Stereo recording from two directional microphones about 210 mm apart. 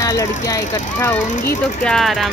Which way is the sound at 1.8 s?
Centre (ahead or behind).